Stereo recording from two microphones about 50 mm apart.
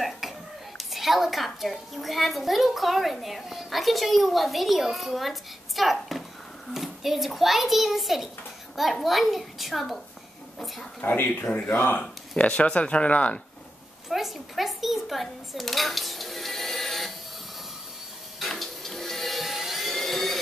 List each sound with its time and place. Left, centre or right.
0.7 s a child's voice: centre
11.0 s speech: left
12.0 s speech: left
14.0 s speech: centre
18.4 s a sound: centre